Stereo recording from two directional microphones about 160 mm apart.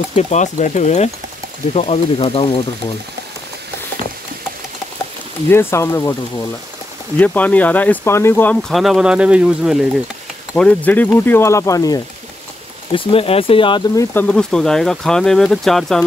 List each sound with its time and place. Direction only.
0.1 s speech: 45° left (ahead or behind)
5.5 s speech: 15° left (ahead or behind)
7.2 s speech: 10° left (ahead or behind)
10.5 s speech: 10° left (ahead or behind)
12.9 s speech: 35° left (ahead or behind)
14.1 s speech: 5° left (ahead or behind)